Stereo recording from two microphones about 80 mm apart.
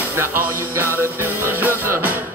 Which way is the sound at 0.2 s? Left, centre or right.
Right.